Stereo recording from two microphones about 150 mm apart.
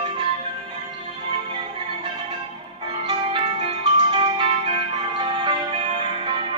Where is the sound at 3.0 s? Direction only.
35° right (ahead or behind).